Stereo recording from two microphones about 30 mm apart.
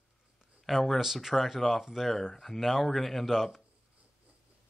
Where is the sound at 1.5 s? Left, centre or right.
Centre.